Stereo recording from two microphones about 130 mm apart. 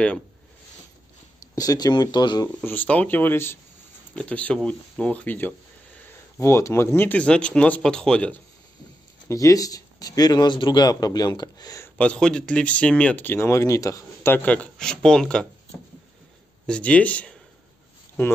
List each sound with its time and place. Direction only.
1.5 s speech: 30° left (ahead or behind)
2.6 s speech: 15° left (ahead or behind)
9.3 s speech: 25° left (ahead or behind)
11.8 s speech: 10° left (ahead or behind)
16.6 s speech: 10° left (ahead or behind)